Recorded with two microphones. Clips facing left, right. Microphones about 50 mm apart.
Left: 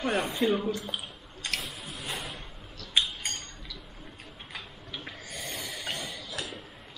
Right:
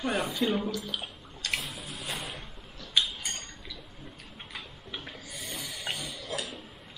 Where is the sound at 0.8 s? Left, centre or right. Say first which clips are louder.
Even; left.